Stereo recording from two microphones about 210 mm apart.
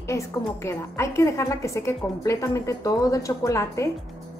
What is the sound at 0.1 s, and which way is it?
A woman's voice, 15° left (ahead or behind).